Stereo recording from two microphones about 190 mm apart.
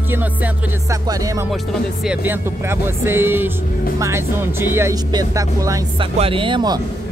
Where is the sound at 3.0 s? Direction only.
10° right (ahead or behind).